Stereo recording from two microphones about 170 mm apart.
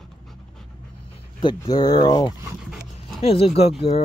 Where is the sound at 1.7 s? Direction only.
25° left (ahead or behind).